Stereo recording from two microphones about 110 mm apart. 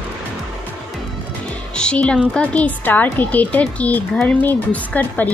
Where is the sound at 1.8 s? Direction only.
10° left (ahead or behind).